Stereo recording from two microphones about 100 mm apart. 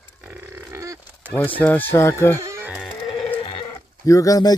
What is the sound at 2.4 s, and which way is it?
Music, 30° right (ahead or behind).